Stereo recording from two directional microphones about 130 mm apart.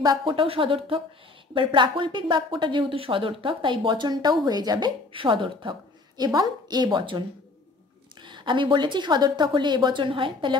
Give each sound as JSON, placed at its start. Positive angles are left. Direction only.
{"t": 0.0, "sound": "speech", "side_deg": -35}